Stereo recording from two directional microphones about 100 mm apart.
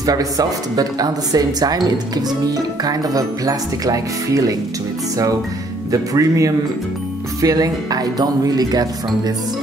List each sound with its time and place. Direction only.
0.0 s speech: 40° right (ahead or behind)
5.9 s speech: 35° right (ahead or behind)